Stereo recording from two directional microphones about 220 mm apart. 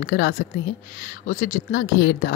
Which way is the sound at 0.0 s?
50° left (ahead or behind).